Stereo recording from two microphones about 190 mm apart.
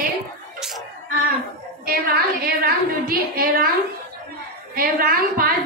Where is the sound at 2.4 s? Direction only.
50° right (ahead or behind).